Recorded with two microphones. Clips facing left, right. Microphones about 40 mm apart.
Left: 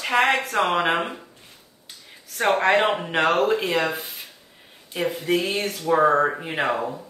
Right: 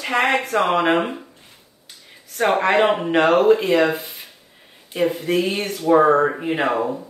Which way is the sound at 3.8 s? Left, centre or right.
Centre.